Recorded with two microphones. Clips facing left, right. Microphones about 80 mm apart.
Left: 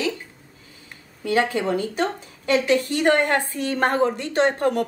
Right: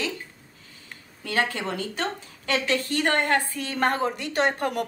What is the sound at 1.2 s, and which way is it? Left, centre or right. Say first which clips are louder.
A woman's voice: left 5 dB; left.